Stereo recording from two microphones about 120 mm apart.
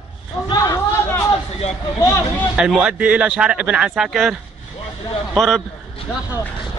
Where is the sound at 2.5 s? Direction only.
5° right (ahead or behind).